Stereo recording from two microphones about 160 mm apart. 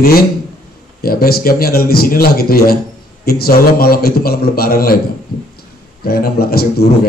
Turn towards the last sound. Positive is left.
turn(degrees=70)  # may be behind; listen again after turning